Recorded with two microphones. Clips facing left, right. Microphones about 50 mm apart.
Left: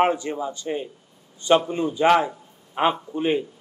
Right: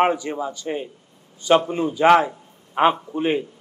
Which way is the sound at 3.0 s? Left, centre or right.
Right.